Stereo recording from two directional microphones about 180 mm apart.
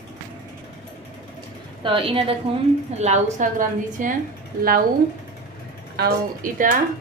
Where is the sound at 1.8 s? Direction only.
30° right (ahead or behind); by 4.2 s 45° right (ahead or behind).